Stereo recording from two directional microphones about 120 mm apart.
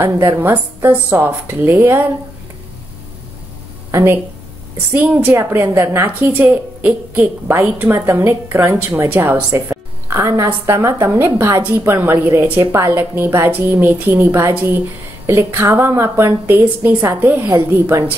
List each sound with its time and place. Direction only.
0.0 s a woman's voice: 20° right (ahead or behind)
3.9 s a woman's voice: 20° right (ahead or behind)